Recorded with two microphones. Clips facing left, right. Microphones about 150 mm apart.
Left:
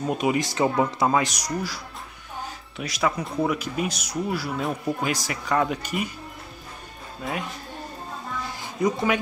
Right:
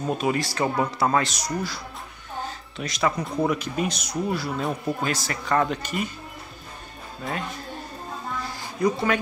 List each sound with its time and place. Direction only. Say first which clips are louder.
0.1 s speech: left 1 dB; 15° left (ahead or behind)
2.4 s music: even; 10° left (ahead or behind)
3.4 s speech: right 2 dB; 5° left (ahead or behind)
5.0 s speech: even; 10° left (ahead or behind)
7.2 s a man's voice: left 1 dB; centre (ahead or behind)
8.8 s speech: even; 15° left (ahead or behind)